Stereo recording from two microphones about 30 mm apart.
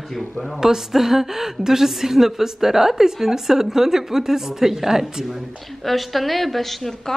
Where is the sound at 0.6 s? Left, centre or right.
Centre.